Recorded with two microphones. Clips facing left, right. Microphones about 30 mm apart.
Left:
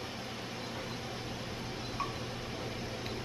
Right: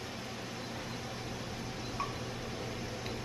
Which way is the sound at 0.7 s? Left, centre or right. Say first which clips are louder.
Left 1 dB; centre.